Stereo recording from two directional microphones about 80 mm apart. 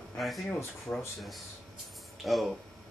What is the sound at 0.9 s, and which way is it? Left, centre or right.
Speech, left.